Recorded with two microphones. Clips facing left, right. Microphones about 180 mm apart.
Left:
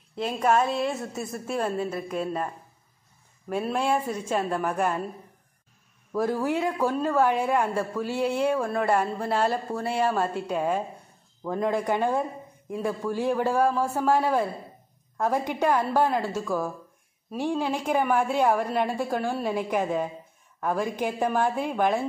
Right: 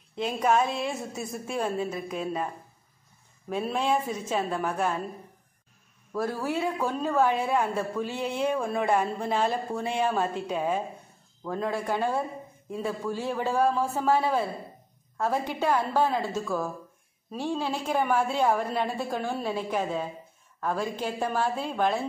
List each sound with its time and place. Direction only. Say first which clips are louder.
0.4 s a woman's voice: left 2 dB; centre (ahead or behind)
3.4 s a woman's voice: left 1 dB; 5° left (ahead or behind)
6.1 s a woman's voice: left 4 dB; 15° left (ahead or behind)